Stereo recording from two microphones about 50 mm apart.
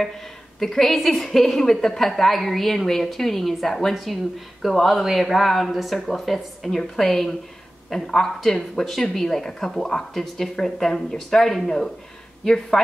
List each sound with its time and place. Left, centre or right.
0.6 s a woman's voice: centre